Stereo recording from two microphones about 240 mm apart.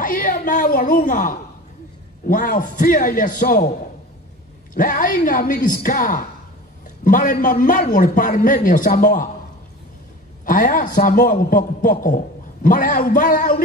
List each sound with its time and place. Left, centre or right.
0.0 s a woman's voice: left
4.7 s a man's voice: left
10.4 s a man's voice: left